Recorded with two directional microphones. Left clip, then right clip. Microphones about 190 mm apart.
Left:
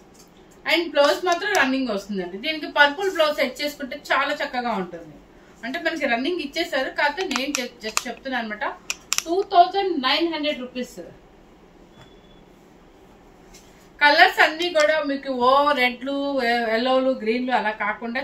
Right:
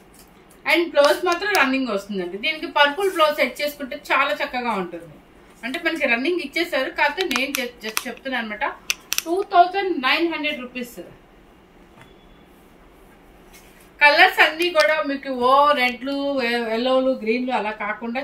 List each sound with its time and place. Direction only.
0.9 s a woman's voice: 20° left (ahead or behind)
7.2 s a woman's voice: 5° right (ahead or behind)
8.0 s a woman's voice: 10° left (ahead or behind)
9.1 s a woman's voice: 5° right (ahead or behind)
13.9 s a woman's voice: 15° left (ahead or behind)